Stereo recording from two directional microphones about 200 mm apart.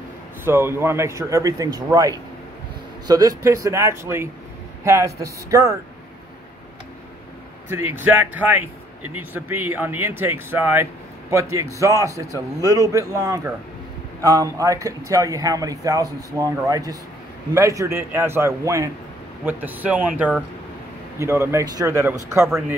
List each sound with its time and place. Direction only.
0.5 s speech: 10° right (ahead or behind)
7.9 s speech: 10° right (ahead or behind)